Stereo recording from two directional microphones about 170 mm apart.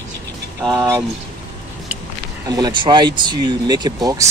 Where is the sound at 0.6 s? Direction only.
20° right (ahead or behind).